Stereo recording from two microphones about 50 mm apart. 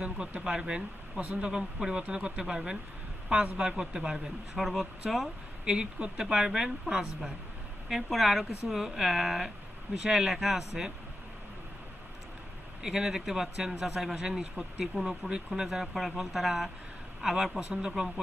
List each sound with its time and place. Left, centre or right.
0.0 s a man's voice: centre
4.6 s speech: centre
5.7 s a man's voice: right; by 10.9 s centre
12.8 s a man's voice: centre
15.6 s a man's voice: centre